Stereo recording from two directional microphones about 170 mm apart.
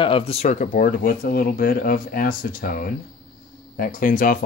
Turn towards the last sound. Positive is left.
turn(degrees=55)  # may be behind; listen again after turning